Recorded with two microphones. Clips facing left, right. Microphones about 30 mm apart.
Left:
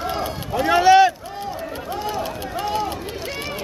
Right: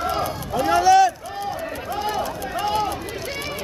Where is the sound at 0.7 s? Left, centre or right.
Left.